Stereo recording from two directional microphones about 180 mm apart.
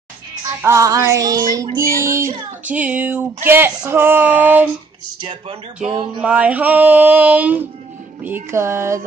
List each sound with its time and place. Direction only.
0.6 s music: 15° right (ahead or behind)
5.2 s speech: 30° right (ahead or behind)
6.2 s music: 5° right (ahead or behind)